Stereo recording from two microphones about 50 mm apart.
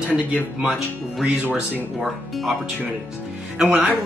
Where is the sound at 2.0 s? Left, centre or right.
Centre.